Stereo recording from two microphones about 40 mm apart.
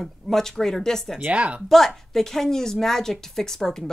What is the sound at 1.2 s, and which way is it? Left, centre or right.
Speech, right.